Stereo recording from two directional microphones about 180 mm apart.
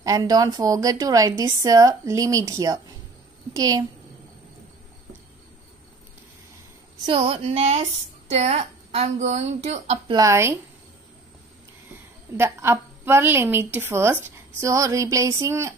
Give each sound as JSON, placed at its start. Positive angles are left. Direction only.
{"t": 0.0, "sound": "a woman's voice", "side_deg": -20}
{"t": 7.1, "sound": "a woman's voice", "side_deg": -30}
{"t": 10.1, "sound": "a woman's voice", "side_deg": -15}
{"t": 12.4, "sound": "a woman's voice", "side_deg": -15}